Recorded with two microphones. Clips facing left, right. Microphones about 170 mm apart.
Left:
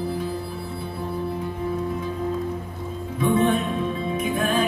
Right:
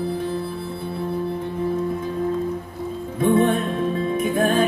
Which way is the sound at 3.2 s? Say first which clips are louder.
Right 2 dB; 50° right (ahead or behind).